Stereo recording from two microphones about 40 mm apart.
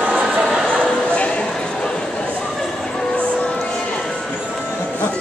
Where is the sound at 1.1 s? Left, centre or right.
Left.